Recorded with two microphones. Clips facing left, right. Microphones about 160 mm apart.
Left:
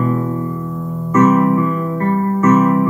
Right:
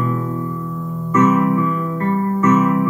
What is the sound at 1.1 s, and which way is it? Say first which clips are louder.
Music: left 3 dB; 40° left (ahead or behind).